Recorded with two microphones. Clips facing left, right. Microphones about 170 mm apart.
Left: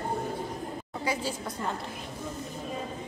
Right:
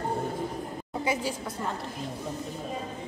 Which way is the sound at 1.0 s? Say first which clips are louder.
Right 2 dB; 20° right (ahead or behind).